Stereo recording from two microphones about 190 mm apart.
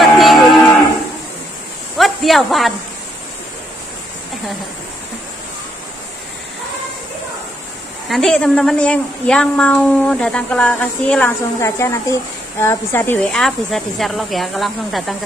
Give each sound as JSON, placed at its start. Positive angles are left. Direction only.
{"t": 0.0, "sound": "moo", "side_deg": 0}
{"t": 2.0, "sound": "snake", "side_deg": 0}
{"t": 8.1, "sound": "a woman's voice", "side_deg": 0}